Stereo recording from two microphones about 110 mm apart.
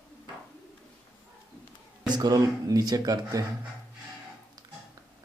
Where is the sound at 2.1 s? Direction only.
35° right (ahead or behind).